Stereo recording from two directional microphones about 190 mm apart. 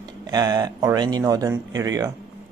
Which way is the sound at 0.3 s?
20° right (ahead or behind).